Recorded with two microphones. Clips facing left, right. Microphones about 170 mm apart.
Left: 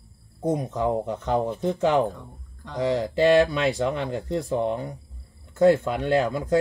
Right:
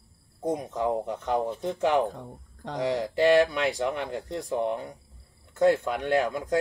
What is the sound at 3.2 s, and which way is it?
Speech, 10° right (ahead or behind).